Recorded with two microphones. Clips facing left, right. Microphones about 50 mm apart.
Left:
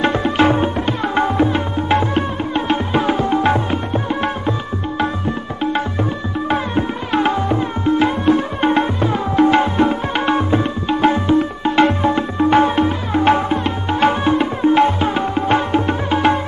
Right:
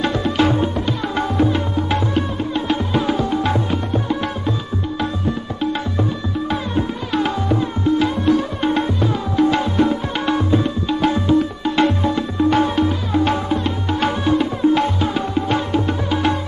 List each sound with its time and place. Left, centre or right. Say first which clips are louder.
0.0 s music: left 3 dB; left
6.5 s tabla: left 5 dB; left